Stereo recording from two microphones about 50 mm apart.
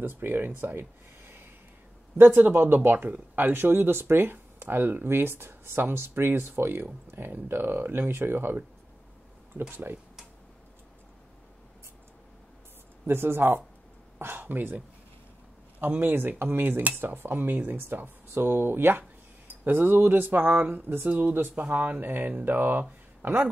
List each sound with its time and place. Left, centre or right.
0.0 s speech: right
13.0 s speech: right
16.0 s speech: right